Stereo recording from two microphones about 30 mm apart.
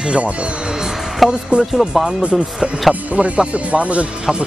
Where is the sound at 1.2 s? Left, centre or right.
Centre.